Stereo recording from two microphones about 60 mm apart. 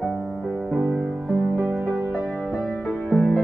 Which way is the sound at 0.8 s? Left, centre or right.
Right.